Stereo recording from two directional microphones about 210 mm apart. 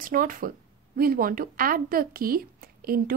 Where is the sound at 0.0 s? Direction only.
40° right (ahead or behind).